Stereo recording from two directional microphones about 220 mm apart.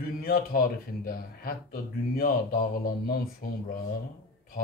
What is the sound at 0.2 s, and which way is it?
Speech, 45° left (ahead or behind).